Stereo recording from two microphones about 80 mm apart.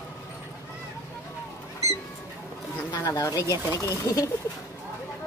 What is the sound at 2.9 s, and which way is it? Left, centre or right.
Speech, left.